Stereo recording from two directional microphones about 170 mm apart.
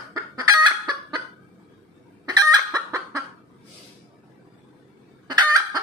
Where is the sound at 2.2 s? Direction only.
20° right (ahead or behind).